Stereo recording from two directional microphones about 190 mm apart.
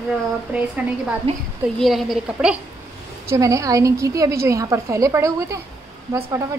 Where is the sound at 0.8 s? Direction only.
5° right (ahead or behind).